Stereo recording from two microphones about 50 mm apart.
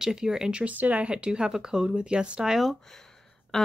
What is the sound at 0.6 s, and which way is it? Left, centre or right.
Speech, right.